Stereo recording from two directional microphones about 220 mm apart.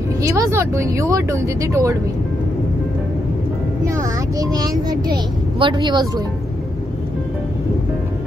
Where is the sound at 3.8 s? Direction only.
15° right (ahead or behind).